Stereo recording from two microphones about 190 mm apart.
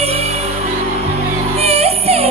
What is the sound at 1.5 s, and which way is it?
Music, 35° right (ahead or behind).